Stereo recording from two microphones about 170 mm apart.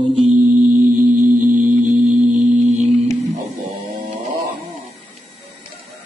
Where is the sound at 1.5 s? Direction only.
10° right (ahead or behind).